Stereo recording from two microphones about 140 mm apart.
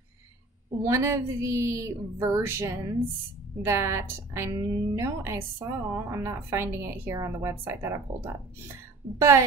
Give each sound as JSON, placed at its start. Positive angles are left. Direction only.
{"t": 0.8, "sound": "speech", "side_deg": -20}